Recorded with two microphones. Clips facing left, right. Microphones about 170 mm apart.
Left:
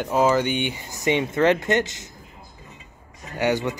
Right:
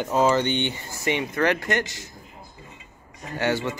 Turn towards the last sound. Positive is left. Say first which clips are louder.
# left 2 dB
turn(degrees=15)  # may be behind; listen again after turning